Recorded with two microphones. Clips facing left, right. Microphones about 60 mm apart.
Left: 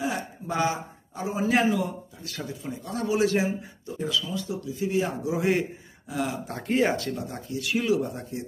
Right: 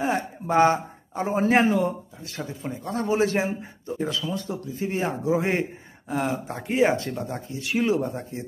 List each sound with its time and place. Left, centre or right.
0.0 s speech: right
1.5 s a man's voice: right
6.4 s a man's voice: centre; by 8.5 s right